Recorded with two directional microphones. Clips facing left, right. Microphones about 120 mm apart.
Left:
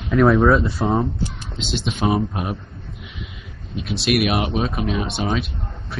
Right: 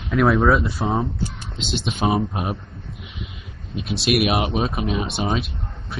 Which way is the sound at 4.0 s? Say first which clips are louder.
Even; 20° right (ahead or behind).